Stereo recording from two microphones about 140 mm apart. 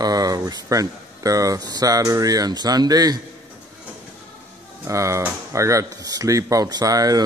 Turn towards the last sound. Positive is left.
turn(degrees=-25)  # may be behind; listen again after turning